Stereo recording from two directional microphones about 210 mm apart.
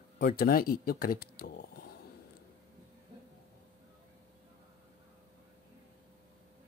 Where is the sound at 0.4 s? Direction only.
45° left (ahead or behind).